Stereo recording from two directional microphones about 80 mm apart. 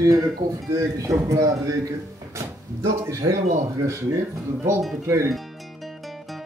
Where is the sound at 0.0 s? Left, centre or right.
Right.